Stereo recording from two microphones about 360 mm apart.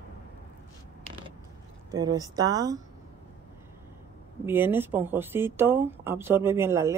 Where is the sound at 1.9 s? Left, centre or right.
Centre.